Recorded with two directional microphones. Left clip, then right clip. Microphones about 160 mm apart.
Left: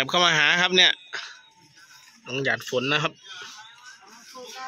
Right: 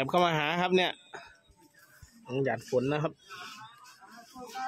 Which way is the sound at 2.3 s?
Centre (ahead or behind).